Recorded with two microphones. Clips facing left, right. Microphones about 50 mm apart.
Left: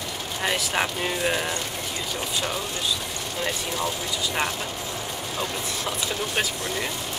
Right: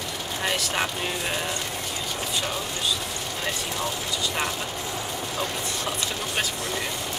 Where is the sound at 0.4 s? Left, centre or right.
Centre.